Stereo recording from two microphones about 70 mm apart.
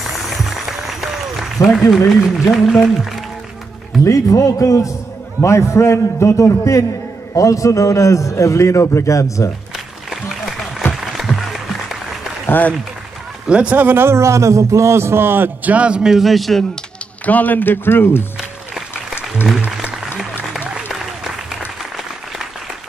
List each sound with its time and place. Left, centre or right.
0.0 s applause: centre
4.0 s a man's voice: left
11.0 s music: centre
12.4 s a man's voice: left
13.5 s a man's voice: centre
17.3 s speech: left
20.9 s applause: centre